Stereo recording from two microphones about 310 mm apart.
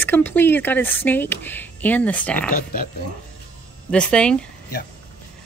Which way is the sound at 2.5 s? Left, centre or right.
Left.